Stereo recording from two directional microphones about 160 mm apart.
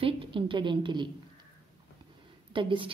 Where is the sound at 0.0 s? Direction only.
35° right (ahead or behind).